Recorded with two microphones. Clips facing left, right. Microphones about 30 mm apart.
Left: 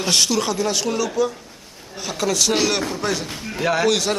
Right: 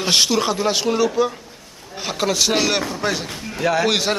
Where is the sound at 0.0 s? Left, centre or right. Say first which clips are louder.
Right 2 dB; right.